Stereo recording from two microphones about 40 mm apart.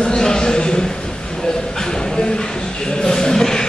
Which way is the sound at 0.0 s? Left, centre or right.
Centre.